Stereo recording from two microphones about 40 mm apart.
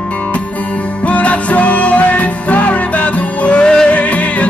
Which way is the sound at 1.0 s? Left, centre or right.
Left.